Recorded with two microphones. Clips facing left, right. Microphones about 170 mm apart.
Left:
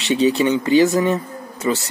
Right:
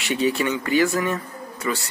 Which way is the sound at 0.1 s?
20° left (ahead or behind).